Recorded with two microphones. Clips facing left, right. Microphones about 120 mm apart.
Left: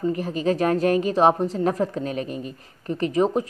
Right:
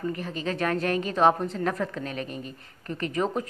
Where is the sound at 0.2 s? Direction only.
40° left (ahead or behind).